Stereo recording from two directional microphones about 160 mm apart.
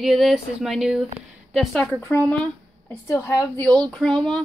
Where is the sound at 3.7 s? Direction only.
5° left (ahead or behind).